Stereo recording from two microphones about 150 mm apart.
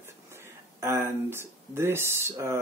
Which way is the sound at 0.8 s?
15° right (ahead or behind).